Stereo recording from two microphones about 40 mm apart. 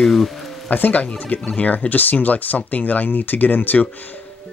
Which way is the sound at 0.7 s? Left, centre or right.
Left.